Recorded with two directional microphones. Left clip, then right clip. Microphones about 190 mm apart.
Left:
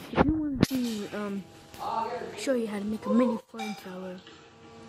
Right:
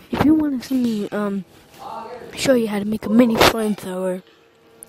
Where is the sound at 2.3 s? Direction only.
55° right (ahead or behind).